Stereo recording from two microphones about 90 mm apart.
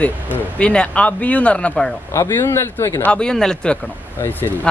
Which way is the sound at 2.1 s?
30° left (ahead or behind).